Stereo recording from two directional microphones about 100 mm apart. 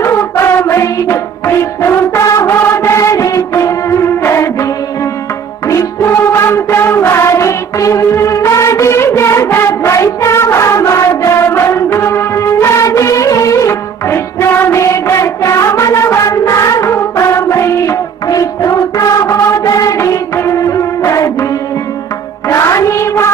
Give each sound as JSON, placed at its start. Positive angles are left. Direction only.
{"t": 0.0, "sound": "music", "side_deg": 25}
{"t": 5.7, "sound": "music", "side_deg": 30}
{"t": 22.5, "sound": "music", "side_deg": 30}